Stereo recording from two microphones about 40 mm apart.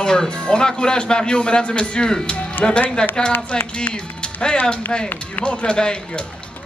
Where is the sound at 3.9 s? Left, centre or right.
Left.